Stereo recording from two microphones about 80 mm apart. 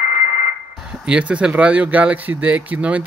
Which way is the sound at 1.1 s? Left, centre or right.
Centre.